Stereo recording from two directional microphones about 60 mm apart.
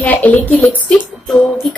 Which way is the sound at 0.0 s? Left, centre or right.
Left.